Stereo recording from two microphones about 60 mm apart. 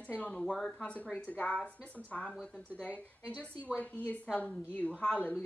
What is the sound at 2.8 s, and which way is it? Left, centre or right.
A woman's voice, left.